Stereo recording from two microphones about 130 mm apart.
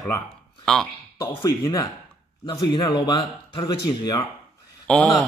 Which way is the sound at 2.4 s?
35° left (ahead or behind).